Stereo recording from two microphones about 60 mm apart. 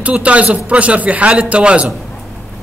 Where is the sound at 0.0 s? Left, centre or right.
Right.